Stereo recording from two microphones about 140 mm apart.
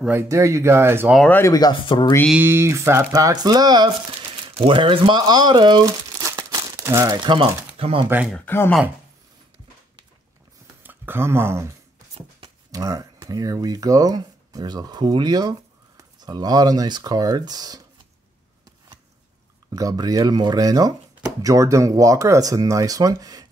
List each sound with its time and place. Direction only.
0.0 s speech: 15° right (ahead or behind)
1.3 s speech: 25° left (ahead or behind)
2.3 s speech: 15° right (ahead or behind)
7.2 s speech: 35° right (ahead or behind)
8.5 s speech: 15° left (ahead or behind)
10.8 s speech: 15° right (ahead or behind)
19.7 s speech: 25° right (ahead or behind)